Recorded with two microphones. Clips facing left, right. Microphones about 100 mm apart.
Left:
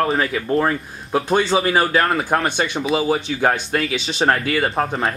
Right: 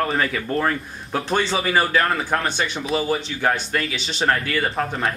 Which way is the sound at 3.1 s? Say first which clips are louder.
Left 3 dB; 25° left (ahead or behind).